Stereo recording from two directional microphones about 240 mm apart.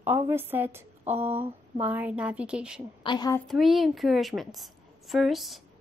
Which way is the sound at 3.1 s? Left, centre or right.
Centre.